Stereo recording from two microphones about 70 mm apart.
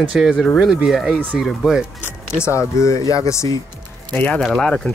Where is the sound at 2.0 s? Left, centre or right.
Left.